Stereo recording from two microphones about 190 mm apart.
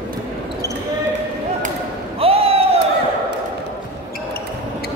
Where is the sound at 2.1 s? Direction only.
30° right (ahead or behind).